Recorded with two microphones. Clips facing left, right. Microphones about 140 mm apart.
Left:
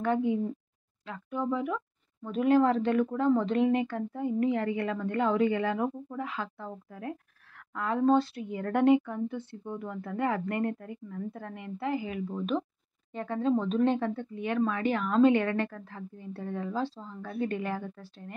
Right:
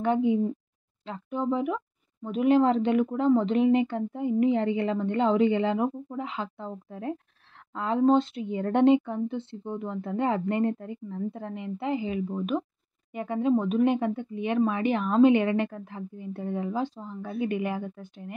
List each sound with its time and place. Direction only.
0.0 s speech: 20° right (ahead or behind)